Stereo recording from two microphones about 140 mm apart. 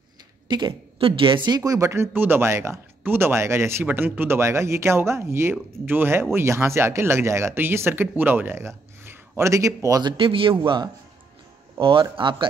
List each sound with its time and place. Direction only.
0.5 s speech: 30° right (ahead or behind)
10.1 s a man's voice: 40° right (ahead or behind)